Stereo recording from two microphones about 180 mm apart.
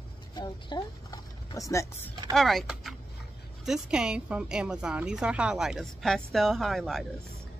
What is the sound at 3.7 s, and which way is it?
Speech, 5° right (ahead or behind).